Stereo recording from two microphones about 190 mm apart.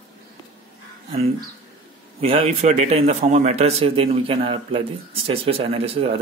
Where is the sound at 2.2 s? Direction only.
30° right (ahead or behind).